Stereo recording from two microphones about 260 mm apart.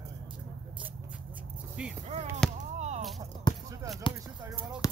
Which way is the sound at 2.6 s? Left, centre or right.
Right.